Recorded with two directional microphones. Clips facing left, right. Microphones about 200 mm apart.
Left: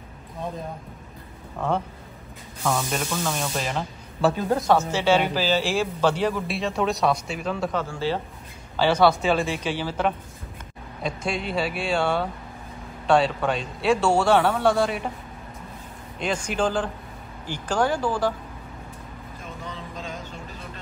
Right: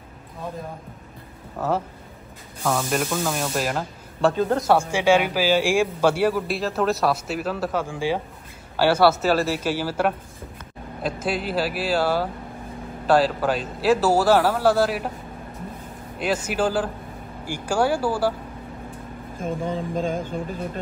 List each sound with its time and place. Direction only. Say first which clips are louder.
1.6 s a man's voice: right 1 dB; 5° right (ahead or behind)
16.2 s a man's voice: right 2 dB; 5° right (ahead or behind)
19.3 s speech: right 12 dB; 50° right (ahead or behind)